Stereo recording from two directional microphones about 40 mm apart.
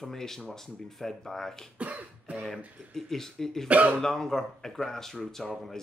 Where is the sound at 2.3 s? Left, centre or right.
Right.